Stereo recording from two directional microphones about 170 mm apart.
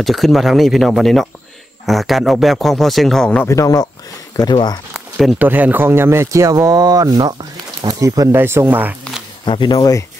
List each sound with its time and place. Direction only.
0.0 s speech: centre (ahead or behind)
3.4 s speech: 20° left (ahead or behind)
4.9 s speech: centre (ahead or behind)
9.4 s speech: 25° left (ahead or behind)